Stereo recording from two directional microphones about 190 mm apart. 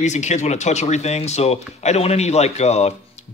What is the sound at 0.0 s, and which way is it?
Speech, 40° left (ahead or behind).